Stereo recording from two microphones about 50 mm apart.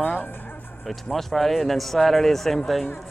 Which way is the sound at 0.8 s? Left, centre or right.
Centre.